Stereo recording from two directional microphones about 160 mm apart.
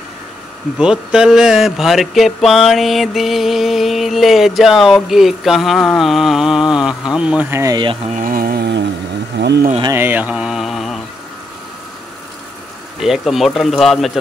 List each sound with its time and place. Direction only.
0.7 s a sound: 5° right (ahead or behind)
7.2 s speech: 5° right (ahead or behind)
7.7 s speech: 30° right (ahead or behind)
8.1 s speech: 55° right (ahead or behind); by 9.7 s 90° right
9.9 s mantra: 10° right (ahead or behind)
13.0 s a sound: centre (ahead or behind)